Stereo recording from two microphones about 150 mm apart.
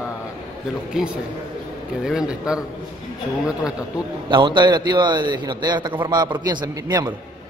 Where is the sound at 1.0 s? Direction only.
5° right (ahead or behind).